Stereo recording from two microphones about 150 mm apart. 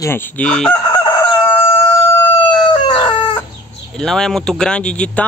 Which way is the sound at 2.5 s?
30° left (ahead or behind).